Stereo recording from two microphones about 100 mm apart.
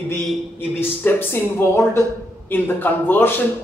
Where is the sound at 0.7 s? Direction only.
20° left (ahead or behind).